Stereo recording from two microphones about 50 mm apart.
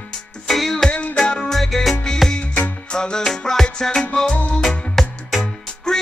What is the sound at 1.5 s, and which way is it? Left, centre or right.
Music, centre.